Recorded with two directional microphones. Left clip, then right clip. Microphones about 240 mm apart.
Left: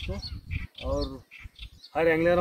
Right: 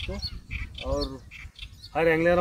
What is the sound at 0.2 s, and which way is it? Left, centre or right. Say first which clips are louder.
Bird: right 4 dB; right.